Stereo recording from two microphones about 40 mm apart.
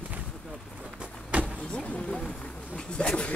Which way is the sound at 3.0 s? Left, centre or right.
Left.